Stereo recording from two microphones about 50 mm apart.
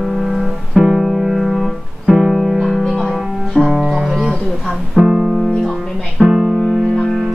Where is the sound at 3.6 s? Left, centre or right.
Centre.